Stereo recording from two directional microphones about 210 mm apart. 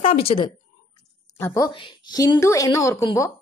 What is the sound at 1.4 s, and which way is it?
A woman's voice, 15° left (ahead or behind).